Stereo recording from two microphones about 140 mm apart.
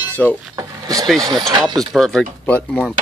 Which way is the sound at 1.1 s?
25° right (ahead or behind).